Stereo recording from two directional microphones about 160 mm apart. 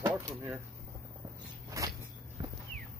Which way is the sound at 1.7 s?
20° right (ahead or behind).